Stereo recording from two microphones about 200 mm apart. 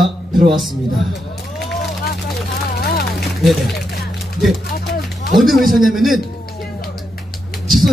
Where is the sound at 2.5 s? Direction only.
55° left (ahead or behind).